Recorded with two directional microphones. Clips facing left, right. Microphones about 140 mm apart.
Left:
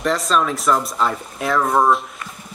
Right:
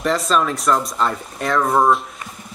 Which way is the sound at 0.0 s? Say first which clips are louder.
Even; centre (ahead or behind).